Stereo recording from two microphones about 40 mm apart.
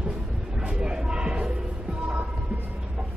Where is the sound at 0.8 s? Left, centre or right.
Right.